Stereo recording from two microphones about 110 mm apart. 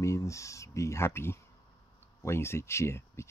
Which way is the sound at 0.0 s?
25° left (ahead or behind).